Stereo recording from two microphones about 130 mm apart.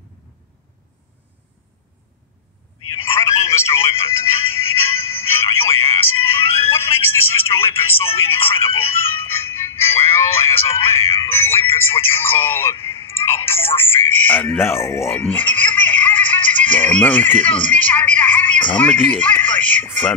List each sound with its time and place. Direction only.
3.0 s telephone: 20° left (ahead or behind)
3.5 s music: 20° left (ahead or behind)
19.1 s speech: 10° left (ahead or behind)